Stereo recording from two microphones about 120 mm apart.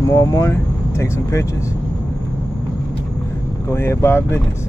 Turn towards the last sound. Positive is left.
turn(degrees=20)  # may be behind; listen again after turning